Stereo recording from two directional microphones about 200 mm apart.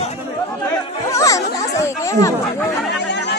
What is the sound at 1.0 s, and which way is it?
Chatter, 15° left (ahead or behind).